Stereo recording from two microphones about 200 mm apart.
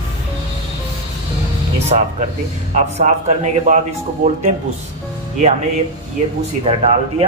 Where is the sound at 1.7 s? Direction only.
35° right (ahead or behind).